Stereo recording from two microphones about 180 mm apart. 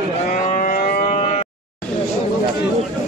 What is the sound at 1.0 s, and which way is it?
Cattle, 30° left (ahead or behind).